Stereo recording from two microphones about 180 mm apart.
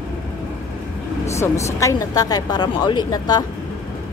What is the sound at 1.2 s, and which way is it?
Speech, 15° left (ahead or behind).